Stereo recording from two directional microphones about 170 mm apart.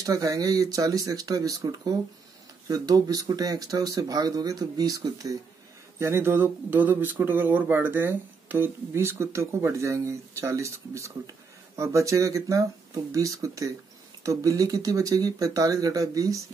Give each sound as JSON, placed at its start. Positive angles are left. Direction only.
{"t": 0.0, "sound": "speech", "side_deg": -20}